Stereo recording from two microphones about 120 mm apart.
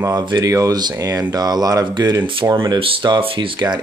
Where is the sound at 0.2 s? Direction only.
35° right (ahead or behind).